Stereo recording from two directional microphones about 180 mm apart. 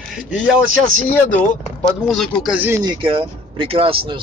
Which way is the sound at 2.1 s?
5° right (ahead or behind).